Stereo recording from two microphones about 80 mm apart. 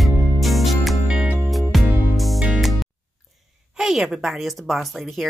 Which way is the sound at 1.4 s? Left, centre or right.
Centre.